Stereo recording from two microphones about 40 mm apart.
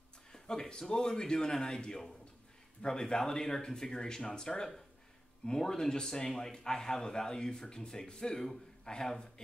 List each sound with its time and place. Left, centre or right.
0.3 s a man's voice: centre